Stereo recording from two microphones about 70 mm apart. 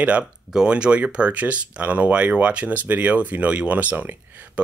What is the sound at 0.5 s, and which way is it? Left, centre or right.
Speech, centre.